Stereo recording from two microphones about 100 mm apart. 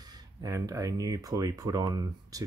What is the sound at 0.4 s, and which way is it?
Speech, 35° right (ahead or behind).